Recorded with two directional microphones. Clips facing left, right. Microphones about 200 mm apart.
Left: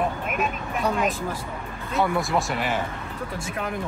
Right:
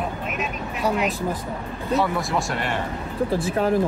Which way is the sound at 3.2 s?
30° right (ahead or behind).